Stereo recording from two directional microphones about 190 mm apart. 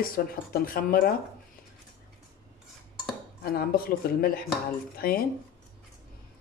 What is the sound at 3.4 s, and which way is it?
Speech, 55° left (ahead or behind).